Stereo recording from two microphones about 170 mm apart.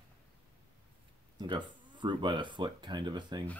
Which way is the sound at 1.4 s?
25° right (ahead or behind).